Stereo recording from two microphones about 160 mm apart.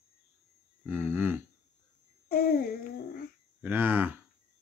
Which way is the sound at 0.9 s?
15° right (ahead or behind).